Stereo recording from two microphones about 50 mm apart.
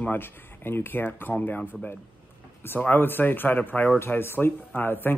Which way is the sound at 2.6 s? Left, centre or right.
Left.